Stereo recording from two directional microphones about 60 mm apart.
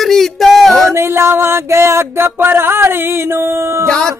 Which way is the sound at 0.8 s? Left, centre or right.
Right.